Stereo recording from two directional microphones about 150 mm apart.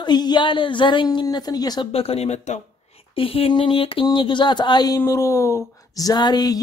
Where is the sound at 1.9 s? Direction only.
40° left (ahead or behind).